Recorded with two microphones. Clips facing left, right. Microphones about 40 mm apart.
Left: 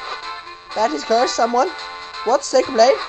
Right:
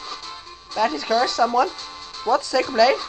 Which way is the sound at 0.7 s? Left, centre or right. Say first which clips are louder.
Left 3 dB; centre.